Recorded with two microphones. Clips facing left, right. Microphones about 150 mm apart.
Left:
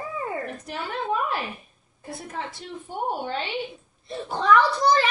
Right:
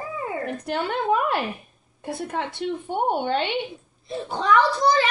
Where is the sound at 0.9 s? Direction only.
70° right (ahead or behind).